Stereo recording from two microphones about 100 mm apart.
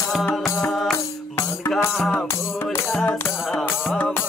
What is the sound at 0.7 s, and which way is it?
Music, centre (ahead or behind).